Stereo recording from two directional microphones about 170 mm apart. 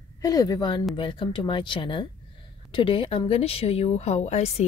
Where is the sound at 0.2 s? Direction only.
20° left (ahead or behind).